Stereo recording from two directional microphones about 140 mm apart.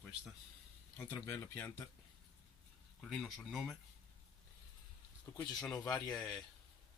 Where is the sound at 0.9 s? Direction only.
15° left (ahead or behind).